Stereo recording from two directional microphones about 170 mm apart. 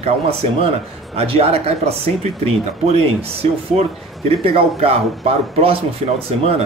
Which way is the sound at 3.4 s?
35° right (ahead or behind).